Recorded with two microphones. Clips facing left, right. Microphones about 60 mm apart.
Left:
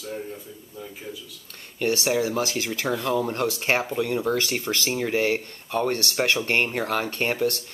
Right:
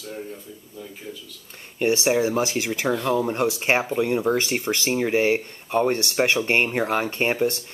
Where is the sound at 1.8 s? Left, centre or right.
Right.